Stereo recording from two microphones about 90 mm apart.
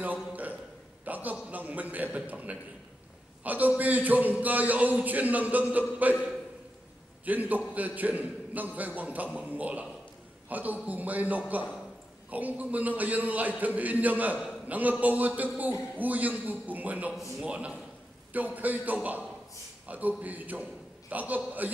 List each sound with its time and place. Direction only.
0.0 s a sound: 20° right (ahead or behind)
1.0 s a man's voice: 20° right (ahead or behind)
7.2 s a man's voice: 20° right (ahead or behind)